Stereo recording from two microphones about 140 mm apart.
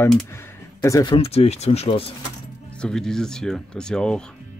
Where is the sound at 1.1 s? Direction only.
45° left (ahead or behind).